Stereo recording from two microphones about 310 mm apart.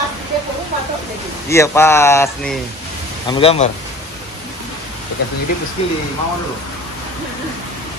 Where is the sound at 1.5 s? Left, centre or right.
Centre.